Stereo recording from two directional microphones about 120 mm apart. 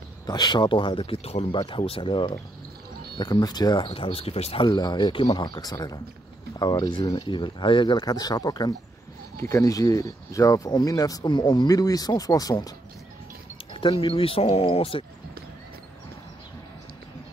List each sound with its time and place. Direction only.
0.3 s speech: 40° left (ahead or behind); by 1.5 s 55° left (ahead or behind)
1.5 s speech: 45° left (ahead or behind)
4.6 s speech: 35° left (ahead or behind)
14.0 s speech: 50° left (ahead or behind)